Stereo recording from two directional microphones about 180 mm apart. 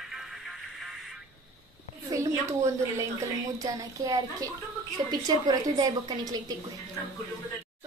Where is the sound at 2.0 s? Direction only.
15° right (ahead or behind).